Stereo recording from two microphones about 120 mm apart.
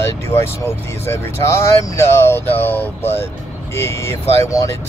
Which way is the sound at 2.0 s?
20° left (ahead or behind).